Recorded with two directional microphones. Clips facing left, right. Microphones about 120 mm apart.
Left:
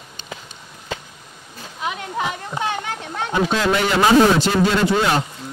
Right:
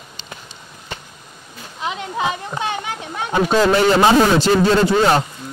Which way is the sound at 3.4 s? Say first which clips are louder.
Right 7 dB; 35° right (ahead or behind).